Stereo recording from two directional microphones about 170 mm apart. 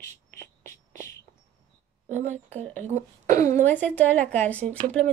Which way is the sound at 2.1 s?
45° right (ahead or behind).